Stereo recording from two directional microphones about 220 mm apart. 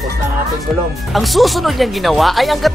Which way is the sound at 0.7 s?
Centre (ahead or behind).